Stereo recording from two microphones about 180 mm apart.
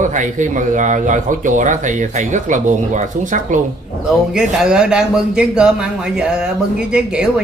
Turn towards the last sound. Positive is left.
turn(degrees=-5)  # may be behind; listen again after turning